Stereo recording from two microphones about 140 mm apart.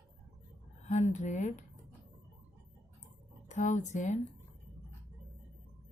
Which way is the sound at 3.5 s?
60° left (ahead or behind).